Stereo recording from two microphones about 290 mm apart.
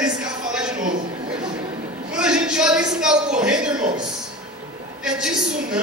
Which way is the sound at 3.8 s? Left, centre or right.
Centre.